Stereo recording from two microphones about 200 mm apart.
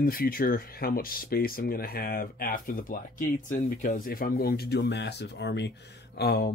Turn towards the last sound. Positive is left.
turn(degrees=55)  # may be behind; listen again after turning